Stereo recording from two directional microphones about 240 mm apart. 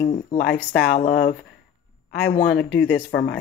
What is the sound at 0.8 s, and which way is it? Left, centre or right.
Speech, left.